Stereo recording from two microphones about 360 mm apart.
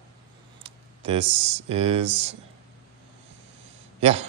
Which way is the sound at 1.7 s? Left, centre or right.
Centre.